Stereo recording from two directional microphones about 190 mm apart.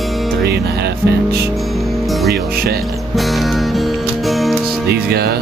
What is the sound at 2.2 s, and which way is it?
Speech, 55° right (ahead or behind).